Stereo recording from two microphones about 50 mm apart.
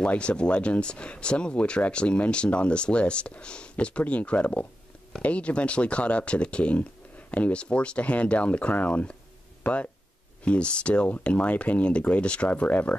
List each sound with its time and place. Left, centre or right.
0.0 s speech: left
10.4 s speech: left